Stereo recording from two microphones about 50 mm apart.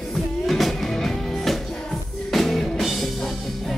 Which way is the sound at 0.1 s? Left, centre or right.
Centre.